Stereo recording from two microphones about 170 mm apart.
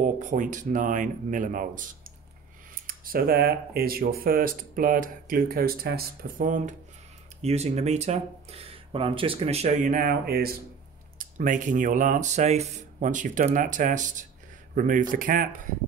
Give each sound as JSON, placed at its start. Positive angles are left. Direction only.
{"t": 0.0, "sound": "speech", "side_deg": -45}
{"t": 7.4, "sound": "speech", "side_deg": -40}
{"t": 11.1, "sound": "speech", "side_deg": -50}